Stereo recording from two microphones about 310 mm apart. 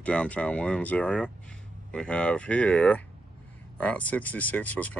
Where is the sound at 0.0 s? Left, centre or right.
Centre.